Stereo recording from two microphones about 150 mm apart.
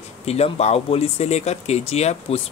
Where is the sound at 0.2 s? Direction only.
45° left (ahead or behind).